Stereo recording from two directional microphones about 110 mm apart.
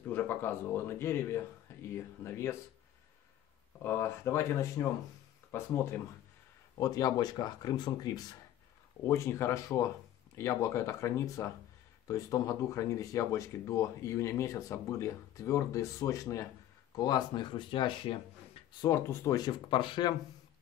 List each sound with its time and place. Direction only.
0.1 s speech: 20° left (ahead or behind)
1.7 s a sound: 25° left (ahead or behind)
2.2 s speech: 25° left (ahead or behind)
3.8 s speech: 20° left (ahead or behind)
6.8 s speech: 35° left (ahead or behind)
9.0 s speech: 25° left (ahead or behind); by 18.1 s 50° left (ahead or behind)
18.9 s speech: 25° left (ahead or behind)
19.4 s speech: 50° left (ahead or behind)